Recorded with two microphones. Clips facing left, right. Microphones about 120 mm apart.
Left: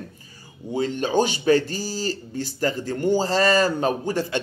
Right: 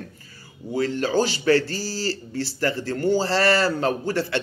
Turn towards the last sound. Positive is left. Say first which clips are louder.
# even
turn(degrees=15)  # may be behind; listen again after turning